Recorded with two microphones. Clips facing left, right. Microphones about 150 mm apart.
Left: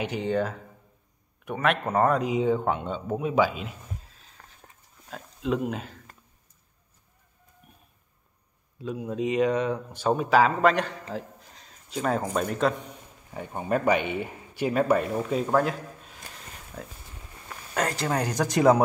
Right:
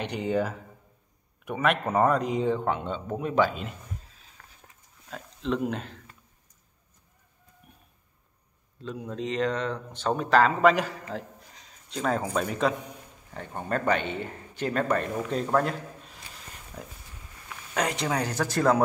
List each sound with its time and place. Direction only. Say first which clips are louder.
0.0 s a man's voice: left 1 dB; centre (ahead or behind)
4.4 s a sound: left 2 dB; 35° left (ahead or behind)
5.1 s speech: left 1 dB; 5° left (ahead or behind)
8.7 s a man's voice: left 4 dB; 10° left (ahead or behind)
13.3 s speech: left 3 dB; 10° left (ahead or behind)
17.7 s speech: left 1 dB; centre (ahead or behind)